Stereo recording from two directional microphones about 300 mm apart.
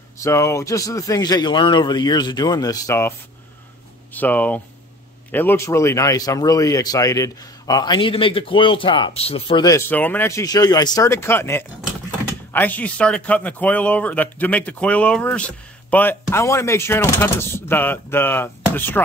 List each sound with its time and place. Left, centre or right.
0.2 s speech: centre